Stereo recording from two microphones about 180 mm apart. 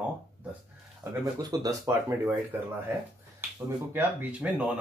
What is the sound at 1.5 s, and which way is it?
Speech, 20° right (ahead or behind).